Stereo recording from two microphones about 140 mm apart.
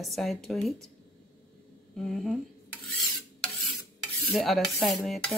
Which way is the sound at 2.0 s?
Centre (ahead or behind).